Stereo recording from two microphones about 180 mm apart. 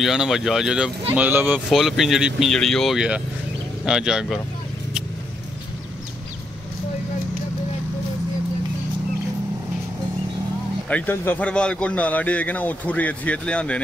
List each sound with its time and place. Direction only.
0.0 s speech: centre (ahead or behind)
10.9 s a man's voice: 10° left (ahead or behind)